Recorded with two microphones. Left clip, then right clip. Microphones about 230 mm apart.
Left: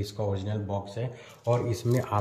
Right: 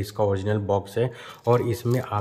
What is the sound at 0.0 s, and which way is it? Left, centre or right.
Speech, centre.